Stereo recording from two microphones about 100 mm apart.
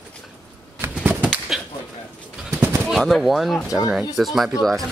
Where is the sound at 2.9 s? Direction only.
Centre (ahead or behind).